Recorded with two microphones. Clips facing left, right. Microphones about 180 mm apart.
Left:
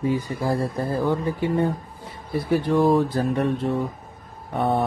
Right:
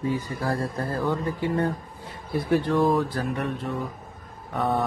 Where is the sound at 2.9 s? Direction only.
25° left (ahead or behind).